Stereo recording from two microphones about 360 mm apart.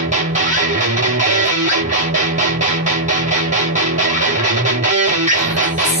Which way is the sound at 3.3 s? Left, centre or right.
Right.